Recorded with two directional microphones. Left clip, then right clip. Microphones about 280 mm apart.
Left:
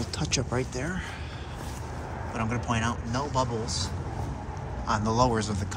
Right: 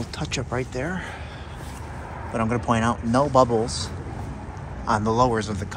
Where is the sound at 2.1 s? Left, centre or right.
Left.